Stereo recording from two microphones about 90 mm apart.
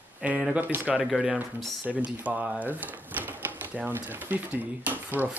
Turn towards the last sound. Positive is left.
turn(degrees=-20)  # may be behind; listen again after turning